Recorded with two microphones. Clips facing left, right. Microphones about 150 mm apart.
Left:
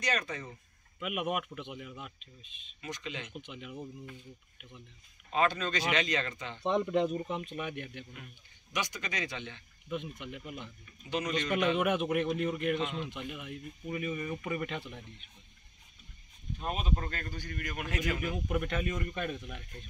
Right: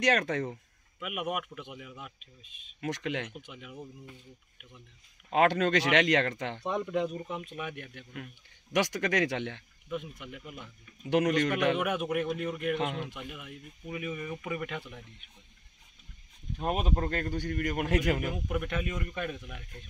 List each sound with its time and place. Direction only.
0.0 s speech: 90° right
0.9 s speech: centre (ahead or behind)
2.8 s speech: 70° right (ahead or behind)
3.3 s speech: 5° right (ahead or behind)
5.3 s speech: 70° right (ahead or behind)
6.8 s speech: centre (ahead or behind)
8.7 s speech: 80° right
9.8 s speech: 5° right (ahead or behind)
11.1 s speech: 75° right (ahead or behind)
11.8 s speech: centre (ahead or behind)
12.7 s speech: 60° right (ahead or behind)
13.1 s speech: 5° right (ahead or behind)
16.5 s speech: 55° right (ahead or behind)
18.5 s speech: 5° right (ahead or behind)